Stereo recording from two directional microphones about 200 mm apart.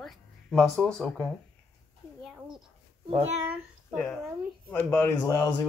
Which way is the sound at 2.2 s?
Centre (ahead or behind).